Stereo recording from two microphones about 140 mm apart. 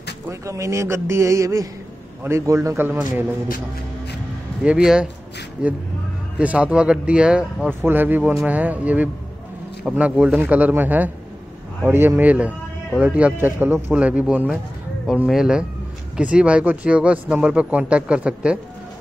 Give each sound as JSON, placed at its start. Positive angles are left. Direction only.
{"t": 0.3, "sound": "a man's voice", "side_deg": -20}
{"t": 4.6, "sound": "speech", "side_deg": -5}